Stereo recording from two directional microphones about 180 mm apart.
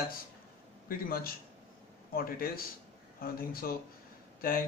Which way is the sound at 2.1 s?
55° left (ahead or behind).